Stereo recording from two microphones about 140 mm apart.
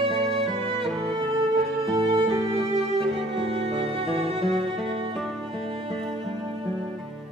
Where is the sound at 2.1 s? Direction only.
40° right (ahead or behind).